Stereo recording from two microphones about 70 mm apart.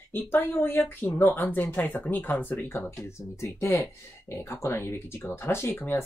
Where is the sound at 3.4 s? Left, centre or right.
Left.